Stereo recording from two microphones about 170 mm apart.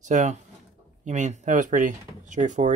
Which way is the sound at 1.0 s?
45° right (ahead or behind).